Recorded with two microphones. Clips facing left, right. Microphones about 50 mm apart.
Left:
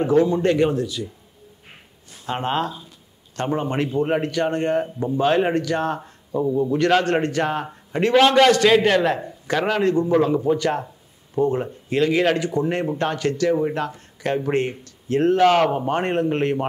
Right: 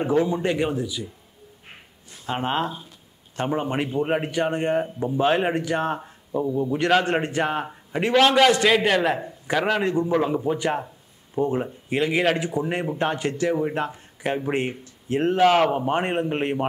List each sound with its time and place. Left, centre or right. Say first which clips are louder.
0.0 s a man's voice: left 4 dB; centre
2.2 s a man's voice: left 1 dB; centre
5.9 s a sound: left 2 dB; centre
6.5 s a man's voice: left 5 dB; centre
7.0 s a man's voice: left 2 dB; centre
10.2 s a man's voice: left 4 dB; centre